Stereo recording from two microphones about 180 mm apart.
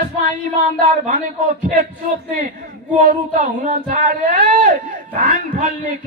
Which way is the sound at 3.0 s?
45° right (ahead or behind).